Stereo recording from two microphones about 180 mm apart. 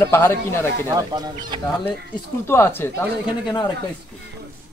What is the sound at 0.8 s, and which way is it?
Speech, 20° right (ahead or behind).